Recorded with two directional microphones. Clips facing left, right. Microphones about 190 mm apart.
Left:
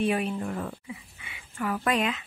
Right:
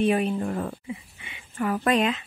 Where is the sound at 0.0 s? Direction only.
30° right (ahead or behind).